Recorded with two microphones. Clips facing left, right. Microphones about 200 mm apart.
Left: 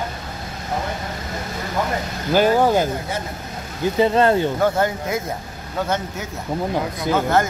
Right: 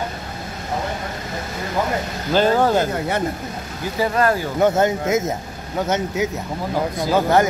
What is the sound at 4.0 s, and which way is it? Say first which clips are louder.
Speech: left 3 dB; 25° left (ahead or behind).